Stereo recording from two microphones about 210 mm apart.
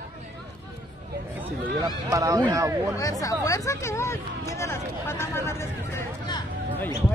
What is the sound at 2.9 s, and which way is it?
Speech, 15° left (ahead or behind).